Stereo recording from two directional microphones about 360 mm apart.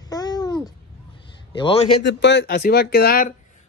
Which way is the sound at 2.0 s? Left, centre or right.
Left.